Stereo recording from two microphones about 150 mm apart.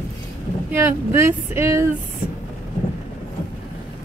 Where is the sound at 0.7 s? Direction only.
15° right (ahead or behind).